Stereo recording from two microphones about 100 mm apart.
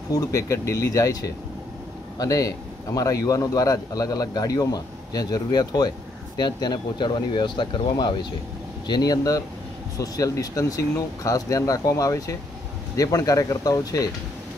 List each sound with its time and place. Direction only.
0.1 s a man's voice: 35° left (ahead or behind)